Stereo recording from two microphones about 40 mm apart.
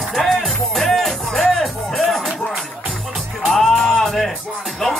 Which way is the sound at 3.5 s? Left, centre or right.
Centre.